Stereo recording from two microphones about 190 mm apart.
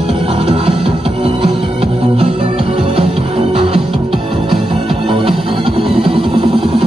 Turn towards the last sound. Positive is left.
turn(degrees=-30)  # may be behind; listen again after turning